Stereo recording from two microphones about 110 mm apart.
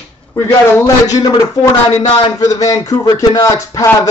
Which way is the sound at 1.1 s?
30° left (ahead or behind).